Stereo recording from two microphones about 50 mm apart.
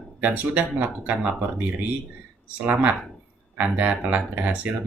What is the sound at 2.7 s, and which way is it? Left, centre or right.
Speech, right.